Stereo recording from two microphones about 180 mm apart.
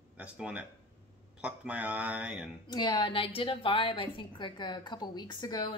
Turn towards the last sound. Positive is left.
turn(degrees=25)  # may be behind; listen again after turning